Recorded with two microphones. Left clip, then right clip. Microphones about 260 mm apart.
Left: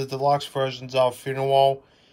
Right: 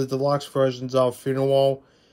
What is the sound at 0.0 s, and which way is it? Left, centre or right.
Speech, centre.